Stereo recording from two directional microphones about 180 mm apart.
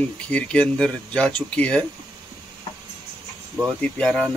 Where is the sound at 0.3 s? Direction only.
5° left (ahead or behind).